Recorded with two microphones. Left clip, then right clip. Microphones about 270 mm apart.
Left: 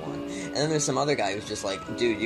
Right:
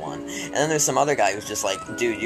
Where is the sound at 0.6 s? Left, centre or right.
Right.